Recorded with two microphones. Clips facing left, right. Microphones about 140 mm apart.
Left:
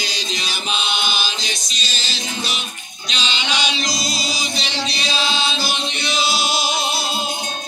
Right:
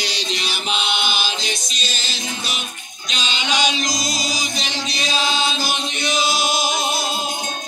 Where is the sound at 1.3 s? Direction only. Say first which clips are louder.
Right 2 dB; 55° right (ahead or behind).